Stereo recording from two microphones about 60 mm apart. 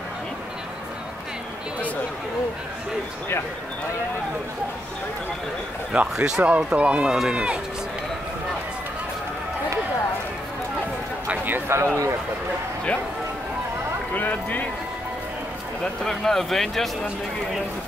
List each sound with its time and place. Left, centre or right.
5.9 s speech: centre
11.2 s a man's voice: right
11.7 s a man's voice: right
14.1 s speech: left
15.8 s speech: centre